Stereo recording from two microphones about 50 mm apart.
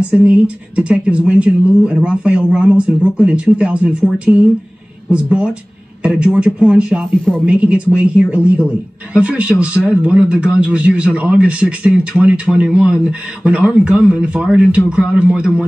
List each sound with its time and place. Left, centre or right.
0.1 s a man's voice: right